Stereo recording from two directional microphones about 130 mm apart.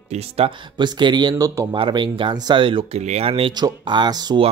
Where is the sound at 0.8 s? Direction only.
35° right (ahead or behind).